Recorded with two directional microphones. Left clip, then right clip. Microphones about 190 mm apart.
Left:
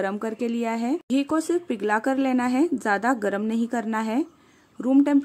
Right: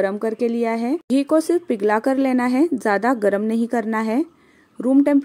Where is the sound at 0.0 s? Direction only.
10° right (ahead or behind).